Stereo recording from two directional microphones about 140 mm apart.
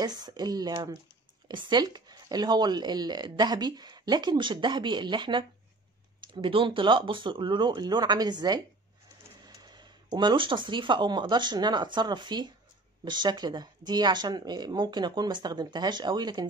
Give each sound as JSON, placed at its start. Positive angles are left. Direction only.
{"t": 0.0, "sound": "speech", "side_deg": -30}